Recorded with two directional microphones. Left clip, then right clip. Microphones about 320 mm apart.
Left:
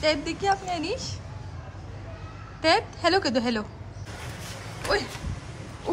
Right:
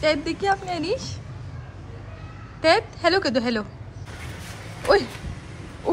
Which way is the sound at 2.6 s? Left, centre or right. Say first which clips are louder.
Right 3 dB; centre.